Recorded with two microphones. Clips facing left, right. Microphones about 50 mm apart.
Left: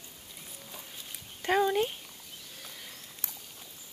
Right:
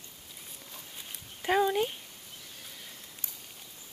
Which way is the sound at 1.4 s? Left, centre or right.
Centre.